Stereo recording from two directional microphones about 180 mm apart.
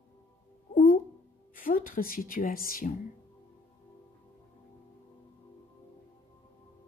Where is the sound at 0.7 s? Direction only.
55° left (ahead or behind).